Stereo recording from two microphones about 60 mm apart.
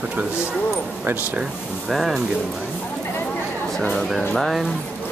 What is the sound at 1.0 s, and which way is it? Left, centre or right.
Speech, right.